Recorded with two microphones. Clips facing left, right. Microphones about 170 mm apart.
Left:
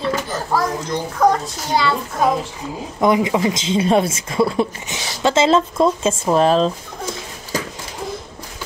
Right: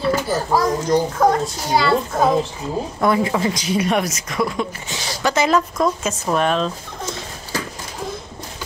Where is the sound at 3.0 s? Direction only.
20° left (ahead or behind).